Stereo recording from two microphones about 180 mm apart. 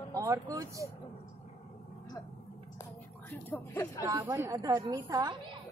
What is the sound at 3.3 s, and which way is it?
Speech, 15° left (ahead or behind).